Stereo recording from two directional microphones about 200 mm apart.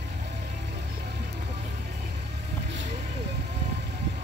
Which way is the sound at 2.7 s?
60° right (ahead or behind).